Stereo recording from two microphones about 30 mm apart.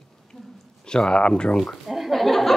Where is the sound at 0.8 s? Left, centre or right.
Left.